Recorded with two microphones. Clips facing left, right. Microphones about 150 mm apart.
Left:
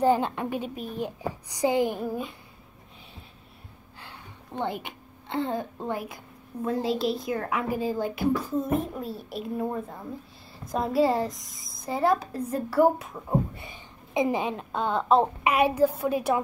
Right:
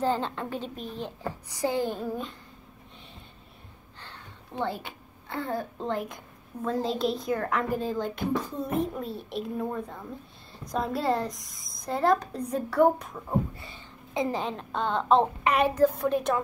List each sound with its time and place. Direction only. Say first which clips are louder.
0.0 s a woman's voice: left 5 dB; 15° left (ahead or behind)
4.0 s a sound: left 1 dB; 15° left (ahead or behind)
5.8 s a woman's voice: right 1 dB; 10° left (ahead or behind)
13.6 s a woman's voice: left 1 dB; 15° left (ahead or behind)